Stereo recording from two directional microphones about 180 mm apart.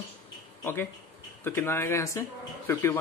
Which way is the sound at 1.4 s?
15° left (ahead or behind).